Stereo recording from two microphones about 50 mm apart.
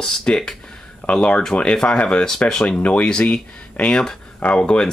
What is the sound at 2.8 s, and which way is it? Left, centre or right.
Speech, left.